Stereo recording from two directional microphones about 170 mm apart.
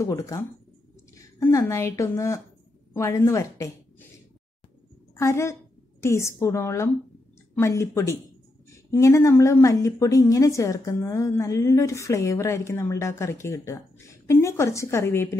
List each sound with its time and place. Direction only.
0.0 s a woman's voice: 20° left (ahead or behind)
5.1 s a woman's voice: 15° left (ahead or behind)